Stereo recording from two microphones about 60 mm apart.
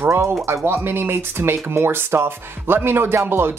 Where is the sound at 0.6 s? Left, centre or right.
Right.